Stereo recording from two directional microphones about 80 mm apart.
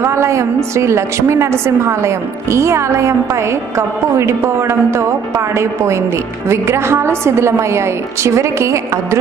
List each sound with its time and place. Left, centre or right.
0.0 s a woman's voice: right